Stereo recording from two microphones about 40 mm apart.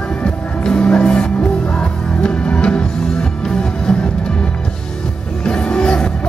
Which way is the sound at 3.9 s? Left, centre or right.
Centre.